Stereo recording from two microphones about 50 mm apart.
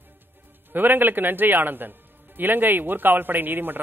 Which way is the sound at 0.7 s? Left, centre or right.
Right.